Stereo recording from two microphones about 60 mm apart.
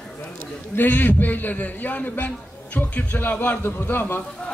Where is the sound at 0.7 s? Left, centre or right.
Left.